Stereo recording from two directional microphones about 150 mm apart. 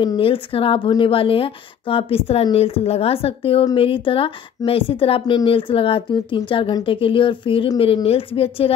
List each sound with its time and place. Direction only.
0.0 s speech: 35° left (ahead or behind)